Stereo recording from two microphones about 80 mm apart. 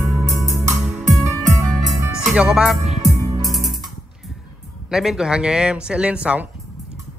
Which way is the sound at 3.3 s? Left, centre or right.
Right.